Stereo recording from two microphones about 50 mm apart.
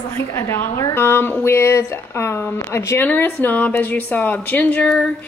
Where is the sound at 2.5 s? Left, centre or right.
Left.